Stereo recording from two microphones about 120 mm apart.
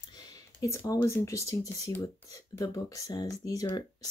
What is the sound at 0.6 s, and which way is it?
Speech, 30° left (ahead or behind).